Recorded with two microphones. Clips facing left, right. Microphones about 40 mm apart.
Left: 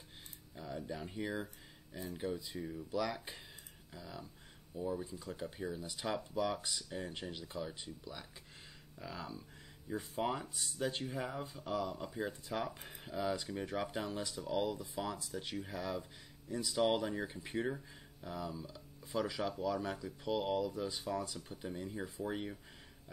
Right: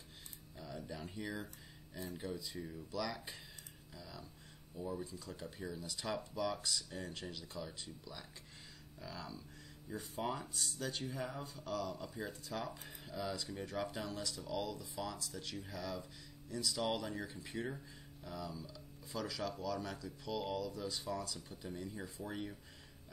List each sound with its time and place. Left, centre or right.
0.6 s speech: centre